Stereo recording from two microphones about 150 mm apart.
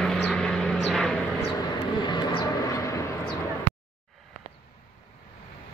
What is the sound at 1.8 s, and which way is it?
Vehicle, 30° left (ahead or behind).